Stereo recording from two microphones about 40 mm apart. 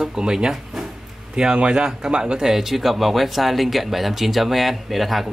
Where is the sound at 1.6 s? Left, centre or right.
Right.